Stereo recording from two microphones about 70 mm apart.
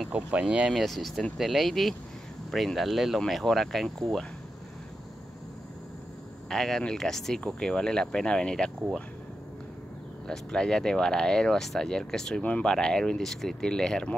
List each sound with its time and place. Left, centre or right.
0.1 s speech: centre
0.7 s speech: centre
6.5 s speech: centre
10.2 s speech: centre